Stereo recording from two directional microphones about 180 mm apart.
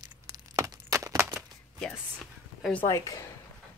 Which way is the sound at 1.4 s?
Centre (ahead or behind).